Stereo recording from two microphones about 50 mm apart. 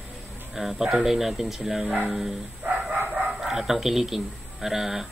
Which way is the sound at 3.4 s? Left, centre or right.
Centre.